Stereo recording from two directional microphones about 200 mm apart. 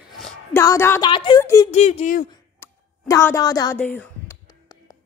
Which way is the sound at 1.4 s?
15° left (ahead or behind).